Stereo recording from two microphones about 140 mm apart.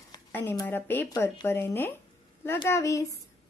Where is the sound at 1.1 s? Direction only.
25° left (ahead or behind).